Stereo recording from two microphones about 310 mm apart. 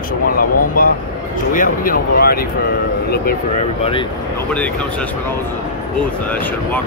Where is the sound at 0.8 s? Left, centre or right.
Left.